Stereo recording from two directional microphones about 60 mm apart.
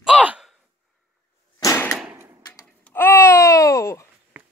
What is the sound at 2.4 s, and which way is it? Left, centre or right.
Babbling, left.